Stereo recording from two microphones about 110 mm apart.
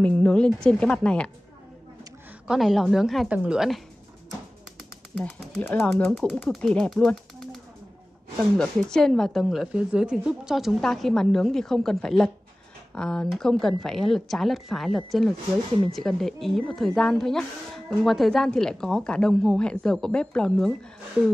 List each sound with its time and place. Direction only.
0.0 s speech: 10° left (ahead or behind)
2.4 s a woman's voice: 5° right (ahead or behind)
5.2 s speech: 15° left (ahead or behind)
6.5 s speech: 5° left (ahead or behind)